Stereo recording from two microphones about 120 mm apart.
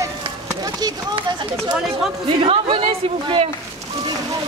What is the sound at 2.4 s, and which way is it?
Speech, 50° right (ahead or behind).